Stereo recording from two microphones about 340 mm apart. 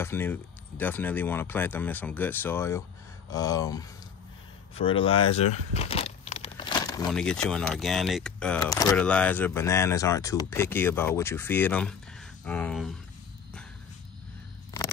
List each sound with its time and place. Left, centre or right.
0.0 s speech: centre